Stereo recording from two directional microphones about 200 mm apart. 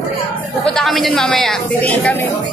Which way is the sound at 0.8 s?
Centre (ahead or behind).